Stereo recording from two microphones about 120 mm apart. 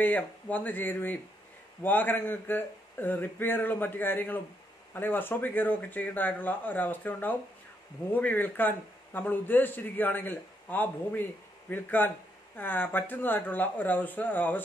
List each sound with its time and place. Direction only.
0.0 s a man's voice: 15° left (ahead or behind)